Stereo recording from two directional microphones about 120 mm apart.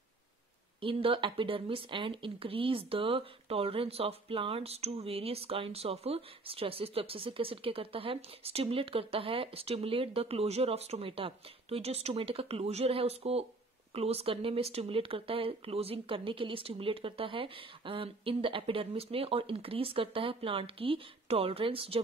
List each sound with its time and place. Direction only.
0.7 s speech: 50° right (ahead or behind)